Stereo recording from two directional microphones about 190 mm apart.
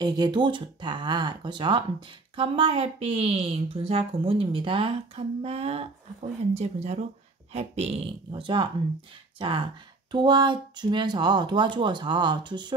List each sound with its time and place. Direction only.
0.0 s speech: 20° right (ahead or behind)